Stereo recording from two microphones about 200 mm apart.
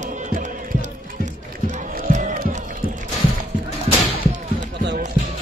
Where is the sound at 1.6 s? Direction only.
40° right (ahead or behind).